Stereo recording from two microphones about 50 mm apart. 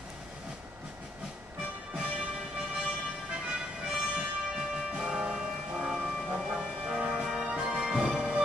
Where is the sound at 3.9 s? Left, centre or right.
Centre.